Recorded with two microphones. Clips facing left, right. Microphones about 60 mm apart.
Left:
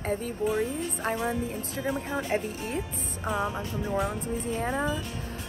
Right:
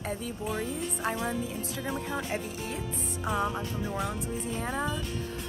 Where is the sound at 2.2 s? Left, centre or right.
Left.